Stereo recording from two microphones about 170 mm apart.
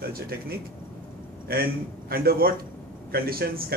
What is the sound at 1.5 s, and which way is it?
A man's voice, 65° right (ahead or behind).